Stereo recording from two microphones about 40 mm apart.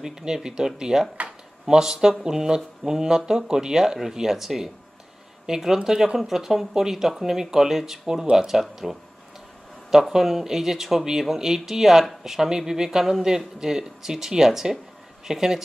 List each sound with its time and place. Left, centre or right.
0.0 s speech: centre